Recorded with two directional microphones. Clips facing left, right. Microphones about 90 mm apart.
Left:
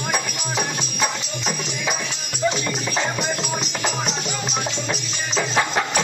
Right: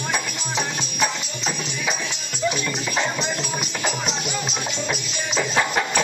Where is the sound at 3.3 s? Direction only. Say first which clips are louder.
Left 1 dB; 25° left (ahead or behind).